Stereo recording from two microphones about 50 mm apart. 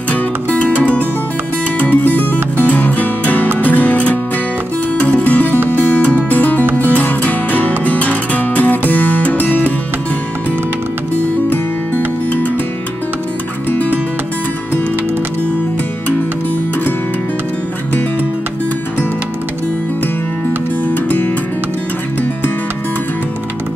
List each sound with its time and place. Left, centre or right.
0.1 s music: left
11.1 s music: left
13.7 s music: left
20.9 s music: left